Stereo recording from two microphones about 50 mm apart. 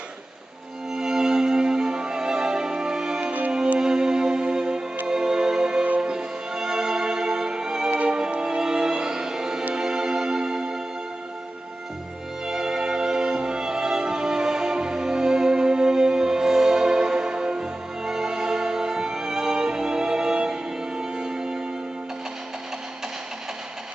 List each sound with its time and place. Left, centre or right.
0.9 s music: centre
12.4 s music: centre